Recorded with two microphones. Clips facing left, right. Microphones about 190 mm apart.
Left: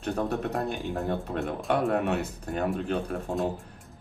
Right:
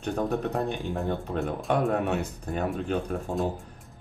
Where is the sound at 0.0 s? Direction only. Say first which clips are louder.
Right 1 dB; centre (ahead or behind).